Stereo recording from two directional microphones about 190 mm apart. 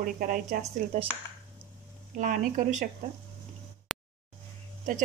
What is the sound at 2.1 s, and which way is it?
Speech, 45° right (ahead or behind).